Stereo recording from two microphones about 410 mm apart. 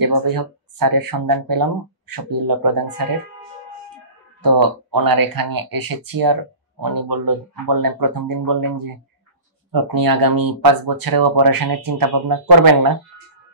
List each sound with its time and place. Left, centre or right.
0.0 s speech: right
4.4 s speech: right